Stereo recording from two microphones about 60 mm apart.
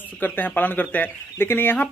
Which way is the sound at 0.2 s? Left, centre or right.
Left.